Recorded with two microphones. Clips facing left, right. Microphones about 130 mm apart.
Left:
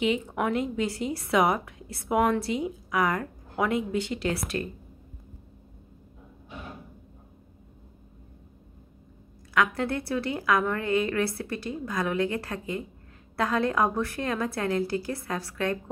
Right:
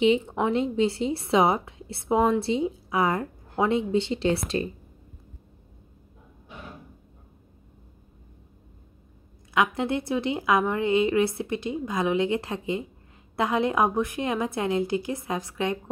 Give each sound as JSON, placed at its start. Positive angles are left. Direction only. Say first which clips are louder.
{"t": 0.0, "sound": "a woman's voice", "louder": "right 4 dB", "side_deg": -25}
{"t": 9.5, "sound": "a woman's voice", "louder": "right 2 dB", "side_deg": -20}